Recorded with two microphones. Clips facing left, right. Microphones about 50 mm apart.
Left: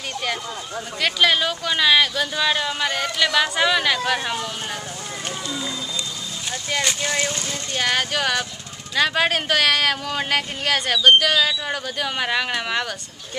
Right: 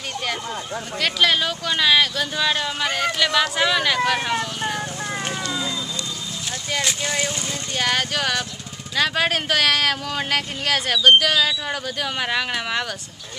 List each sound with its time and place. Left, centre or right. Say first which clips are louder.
1.0 s speech: left 1 dB; centre
6.7 s speech: left 1 dB; centre